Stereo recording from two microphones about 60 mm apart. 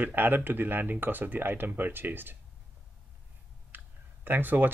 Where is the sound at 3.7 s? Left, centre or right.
Right.